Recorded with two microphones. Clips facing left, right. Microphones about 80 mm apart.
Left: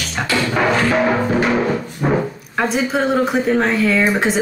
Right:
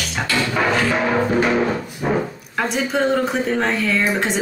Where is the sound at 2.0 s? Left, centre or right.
Left.